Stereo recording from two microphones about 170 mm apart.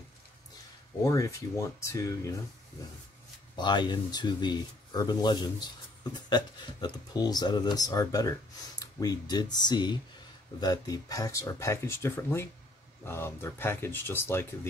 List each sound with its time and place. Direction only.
1.0 s speech: 20° left (ahead or behind)
3.5 s speech: 25° left (ahead or behind)